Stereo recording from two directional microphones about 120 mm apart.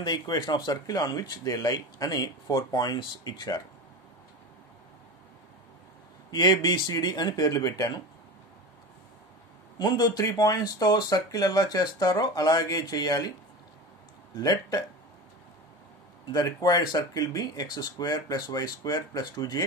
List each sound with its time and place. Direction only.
0.0 s speech: 35° left (ahead or behind)
6.3 s speech: 35° left (ahead or behind)
9.8 s speech: 35° left (ahead or behind)
14.3 s speech: 30° left (ahead or behind)
16.3 s speech: 35° left (ahead or behind)